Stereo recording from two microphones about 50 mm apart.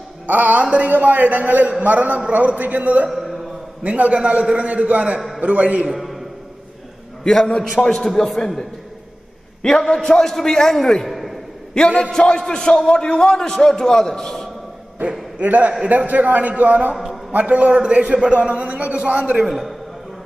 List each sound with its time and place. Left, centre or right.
0.3 s a man's voice: right
3.1 s a sound: centre
3.8 s a man's voice: right
5.9 s a sound: centre
7.2 s a man's voice: centre
9.6 s a man's voice: centre
12.0 s a man's voice: centre
15.4 s a man's voice: right
16.9 s a man's voice: centre
17.3 s a man's voice: right
19.3 s a man's voice: centre